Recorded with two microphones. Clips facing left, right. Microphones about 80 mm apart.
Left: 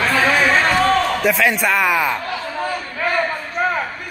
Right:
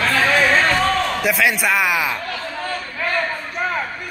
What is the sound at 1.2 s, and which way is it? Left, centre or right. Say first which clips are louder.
Speech: left 2 dB; centre.